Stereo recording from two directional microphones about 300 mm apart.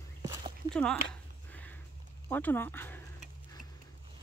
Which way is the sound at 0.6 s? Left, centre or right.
Centre.